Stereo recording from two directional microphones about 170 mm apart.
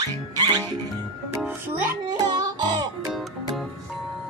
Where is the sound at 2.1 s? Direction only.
25° right (ahead or behind).